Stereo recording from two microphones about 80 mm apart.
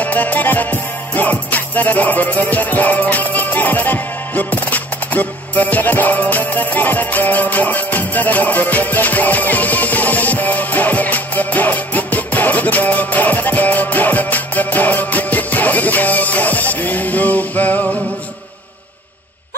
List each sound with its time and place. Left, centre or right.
0.0 s music: left